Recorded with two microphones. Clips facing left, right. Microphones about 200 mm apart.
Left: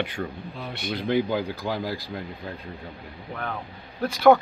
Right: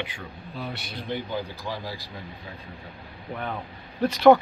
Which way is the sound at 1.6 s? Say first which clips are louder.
Left 5 dB; 55° left (ahead or behind).